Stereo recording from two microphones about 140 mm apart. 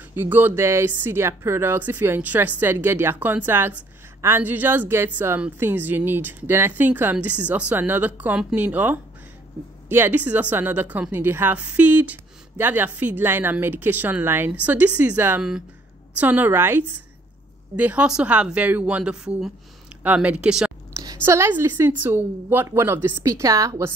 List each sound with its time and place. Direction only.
0.1 s a woman's voice: 15° right (ahead or behind)
20.9 s a woman's voice: 25° right (ahead or behind)